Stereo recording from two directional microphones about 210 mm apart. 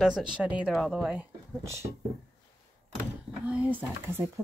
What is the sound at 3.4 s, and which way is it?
Speech, 10° right (ahead or behind).